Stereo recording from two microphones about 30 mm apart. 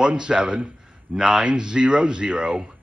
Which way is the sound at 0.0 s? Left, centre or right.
Right.